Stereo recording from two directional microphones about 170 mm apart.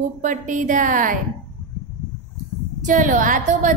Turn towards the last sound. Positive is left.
turn(degrees=-50)  # may be behind; listen again after turning